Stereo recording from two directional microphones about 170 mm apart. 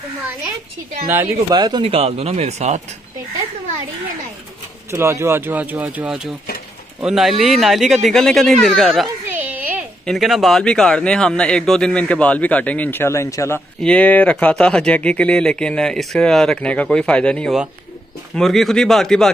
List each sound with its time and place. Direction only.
1.5 s speech: 25° right (ahead or behind)
4.9 s speech: 15° right (ahead or behind); by 9.0 s centre (ahead or behind)
9.2 s a sound: 10° right (ahead or behind)
10.0 s speech: centre (ahead or behind)